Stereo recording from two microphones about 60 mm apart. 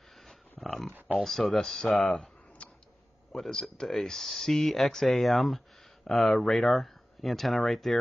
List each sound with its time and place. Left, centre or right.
0.1 s a sound: centre
1.1 s speech: centre
2.6 s tick: left
3.3 s speech: centre